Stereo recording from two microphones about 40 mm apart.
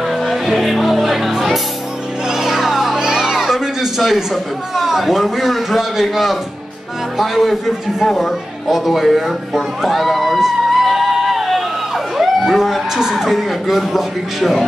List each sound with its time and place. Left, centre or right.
0.1 s music: centre
3.0 s children playing: centre
4.7 s a man's voice: centre
10.4 s music: centre
12.2 s speech: centre